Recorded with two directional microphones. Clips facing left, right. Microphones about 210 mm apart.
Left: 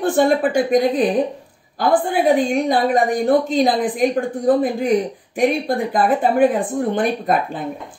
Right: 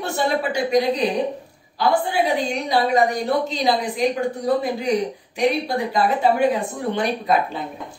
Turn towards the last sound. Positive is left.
turn(degrees=50)  # may be behind; listen again after turning